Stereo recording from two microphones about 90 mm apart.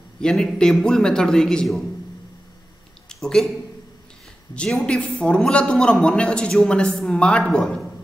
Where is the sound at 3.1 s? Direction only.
5° left (ahead or behind).